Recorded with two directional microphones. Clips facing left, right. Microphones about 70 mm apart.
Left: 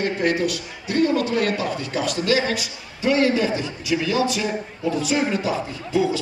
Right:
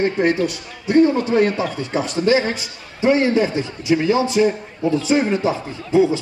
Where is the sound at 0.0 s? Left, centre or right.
Right.